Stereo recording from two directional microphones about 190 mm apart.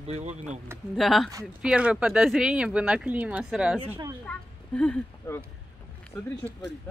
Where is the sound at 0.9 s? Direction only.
Centre (ahead or behind).